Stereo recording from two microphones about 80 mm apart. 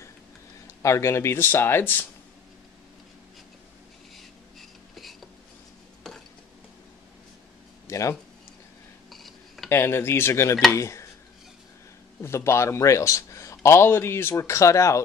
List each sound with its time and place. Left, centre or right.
0.8 s a man's voice: left
4.6 s a sound: centre
6.0 s stir: centre
7.8 s a sound: left
9.1 s dishes: centre
9.7 s a man's voice: left
12.2 s a man's voice: left